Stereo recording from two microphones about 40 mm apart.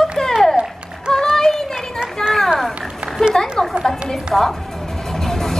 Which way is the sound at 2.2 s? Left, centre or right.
Centre.